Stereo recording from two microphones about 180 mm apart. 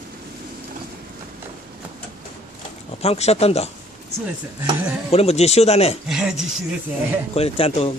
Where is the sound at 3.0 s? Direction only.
35° left (ahead or behind).